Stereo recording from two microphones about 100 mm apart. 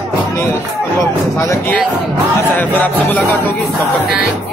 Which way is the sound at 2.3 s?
20° left (ahead or behind).